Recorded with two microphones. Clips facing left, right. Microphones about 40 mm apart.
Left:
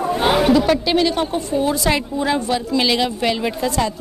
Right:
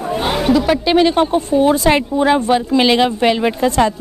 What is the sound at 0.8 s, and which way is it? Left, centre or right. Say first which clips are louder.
A woman's voice: right 5 dB; right.